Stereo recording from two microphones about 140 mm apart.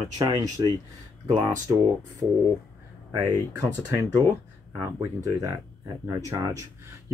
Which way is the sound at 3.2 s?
20° right (ahead or behind).